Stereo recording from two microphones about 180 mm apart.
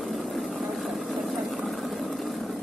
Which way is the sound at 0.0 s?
Centre (ahead or behind).